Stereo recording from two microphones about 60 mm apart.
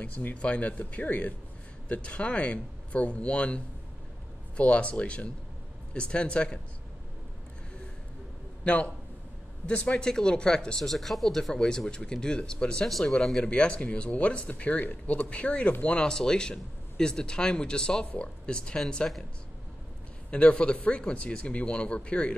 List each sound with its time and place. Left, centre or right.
0.0 s speech: left
8.6 s speech: left
10.9 s speech: centre; by 16.0 s left
16.0 s speech: centre
20.2 s speech: left